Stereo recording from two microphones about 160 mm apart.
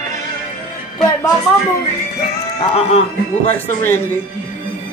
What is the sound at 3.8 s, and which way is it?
Speech, 15° left (ahead or behind).